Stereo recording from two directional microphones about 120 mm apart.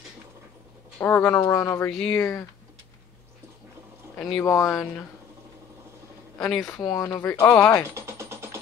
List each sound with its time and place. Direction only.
0.9 s speech: 15° left (ahead or behind)
1.9 s speech: 5° left (ahead or behind)
4.4 s speech: 25° left (ahead or behind)
6.8 s speech: 35° left (ahead or behind)
7.9 s music: 20° right (ahead or behind)